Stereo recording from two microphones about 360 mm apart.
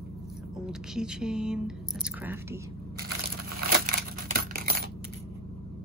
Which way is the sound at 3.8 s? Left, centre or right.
Right.